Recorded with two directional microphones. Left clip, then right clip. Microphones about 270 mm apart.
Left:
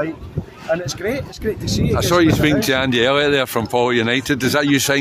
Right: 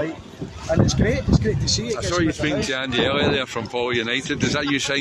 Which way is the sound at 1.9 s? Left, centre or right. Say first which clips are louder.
Left 11 dB; left.